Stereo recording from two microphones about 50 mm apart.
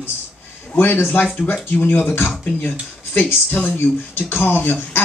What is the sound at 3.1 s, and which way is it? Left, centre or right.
Speech, left.